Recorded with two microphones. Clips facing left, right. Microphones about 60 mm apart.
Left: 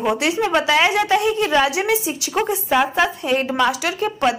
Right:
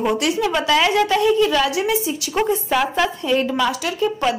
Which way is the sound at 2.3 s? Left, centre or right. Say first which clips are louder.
Even; centre.